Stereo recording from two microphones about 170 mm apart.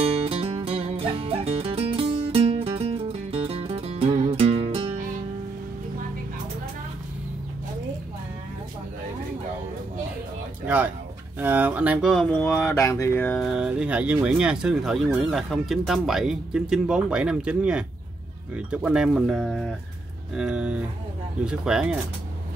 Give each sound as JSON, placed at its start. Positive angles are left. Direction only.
{"t": 0.0, "sound": "music", "side_deg": -35}
{"t": 11.3, "sound": "speech", "side_deg": -10}
{"t": 13.4, "sound": "speech", "side_deg": -5}